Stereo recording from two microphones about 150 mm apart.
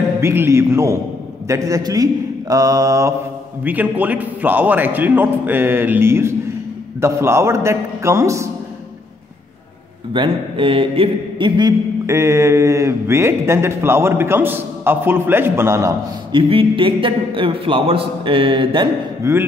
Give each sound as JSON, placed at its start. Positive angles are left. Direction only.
{"t": 0.2, "sound": "speech", "side_deg": -15}
{"t": 10.1, "sound": "a man's voice", "side_deg": -35}
{"t": 12.1, "sound": "speech", "side_deg": -20}
{"t": 16.3, "sound": "a man's voice", "side_deg": -35}
{"t": 19.2, "sound": "speech", "side_deg": -20}